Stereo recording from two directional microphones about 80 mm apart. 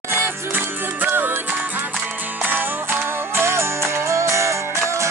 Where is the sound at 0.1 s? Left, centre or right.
Right.